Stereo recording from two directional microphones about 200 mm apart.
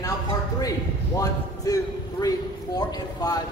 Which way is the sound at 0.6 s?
15° left (ahead or behind).